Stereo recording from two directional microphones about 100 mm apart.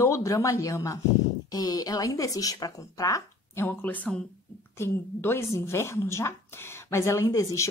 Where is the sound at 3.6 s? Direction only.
15° left (ahead or behind).